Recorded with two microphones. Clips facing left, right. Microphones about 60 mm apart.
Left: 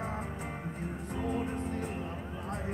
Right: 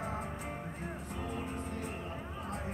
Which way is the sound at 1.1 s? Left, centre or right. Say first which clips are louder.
Left 7 dB; left.